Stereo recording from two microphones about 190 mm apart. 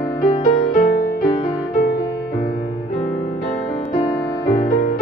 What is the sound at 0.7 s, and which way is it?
Music, 50° left (ahead or behind).